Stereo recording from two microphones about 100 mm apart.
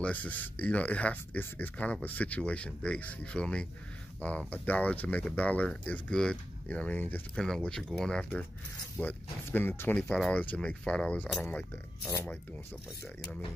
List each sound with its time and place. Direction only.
0.0 s speech: 15° left (ahead or behind)
7.4 s speech: 5° left (ahead or behind)
10.0 s speech: 5° left (ahead or behind)
12.3 s speech: 25° left (ahead or behind)